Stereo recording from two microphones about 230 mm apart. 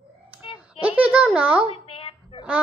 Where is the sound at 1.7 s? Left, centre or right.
Left.